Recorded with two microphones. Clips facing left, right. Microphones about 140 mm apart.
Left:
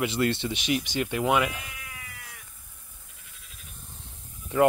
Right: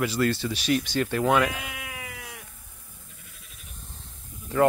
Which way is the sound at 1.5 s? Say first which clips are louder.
Right 4 dB; 90° right.